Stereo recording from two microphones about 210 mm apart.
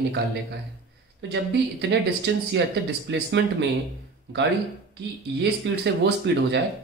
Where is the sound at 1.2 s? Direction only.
50° right (ahead or behind).